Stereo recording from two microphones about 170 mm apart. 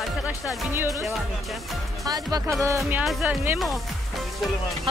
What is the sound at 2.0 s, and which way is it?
Speech, 20° right (ahead or behind).